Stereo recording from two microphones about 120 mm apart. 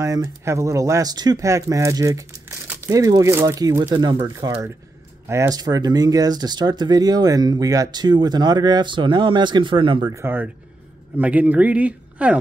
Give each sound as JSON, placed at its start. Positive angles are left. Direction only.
{"t": 0.0, "sound": "speech", "side_deg": -30}
{"t": 3.8, "sound": "speech", "side_deg": -40}
{"t": 5.5, "sound": "speech", "side_deg": -35}
{"t": 10.1, "sound": "speech", "side_deg": -15}